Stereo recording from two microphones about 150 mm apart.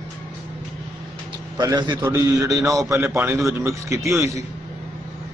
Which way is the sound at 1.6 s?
25° right (ahead or behind).